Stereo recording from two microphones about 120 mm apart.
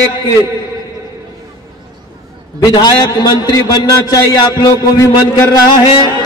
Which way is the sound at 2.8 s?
35° left (ahead or behind).